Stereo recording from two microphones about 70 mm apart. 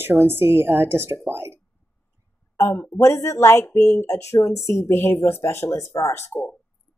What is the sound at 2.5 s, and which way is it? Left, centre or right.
Speech, left.